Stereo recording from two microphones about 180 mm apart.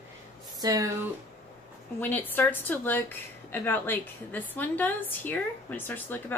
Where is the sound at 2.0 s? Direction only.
10° left (ahead or behind).